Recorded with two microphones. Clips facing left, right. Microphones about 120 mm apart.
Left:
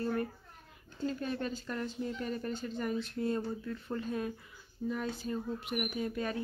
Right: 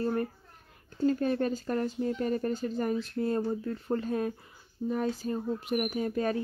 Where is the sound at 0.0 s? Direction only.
35° right (ahead or behind).